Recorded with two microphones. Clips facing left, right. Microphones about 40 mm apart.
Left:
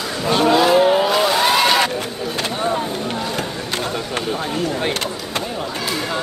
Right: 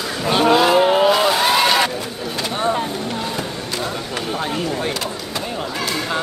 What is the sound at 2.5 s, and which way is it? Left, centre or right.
Vehicle, centre.